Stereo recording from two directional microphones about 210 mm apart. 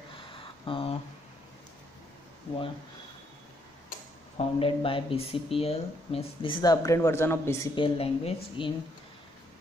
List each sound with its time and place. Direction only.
0.3 s a sound: 25° left (ahead or behind)
4.4 s speech: 25° left (ahead or behind)
7.7 s speech: 25° left (ahead or behind)